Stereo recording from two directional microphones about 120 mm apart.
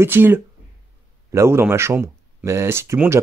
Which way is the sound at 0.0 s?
15° right (ahead or behind).